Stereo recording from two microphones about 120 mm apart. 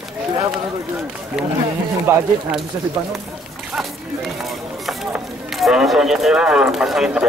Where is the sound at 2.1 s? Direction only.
20° right (ahead or behind).